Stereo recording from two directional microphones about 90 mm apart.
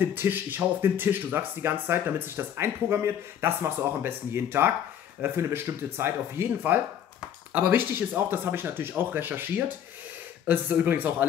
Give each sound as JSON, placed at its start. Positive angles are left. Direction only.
{"t": 0.0, "sound": "speech", "side_deg": -20}